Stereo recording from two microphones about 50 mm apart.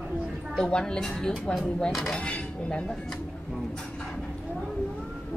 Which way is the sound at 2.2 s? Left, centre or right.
Left.